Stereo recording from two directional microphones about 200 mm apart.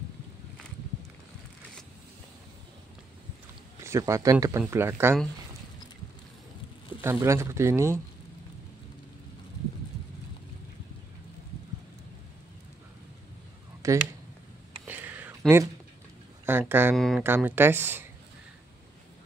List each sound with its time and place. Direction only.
3.8 s speech: 15° right (ahead or behind)
7.0 s speech: 15° right (ahead or behind)
13.8 s speech: 15° right (ahead or behind)
14.9 s a sound: 10° right (ahead or behind)
16.4 s speech: 10° right (ahead or behind)
16.9 s speech: centre (ahead or behind)
17.2 s speech: 10° right (ahead or behind)